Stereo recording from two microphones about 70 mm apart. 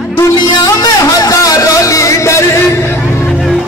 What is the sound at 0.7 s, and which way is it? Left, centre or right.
Music, left.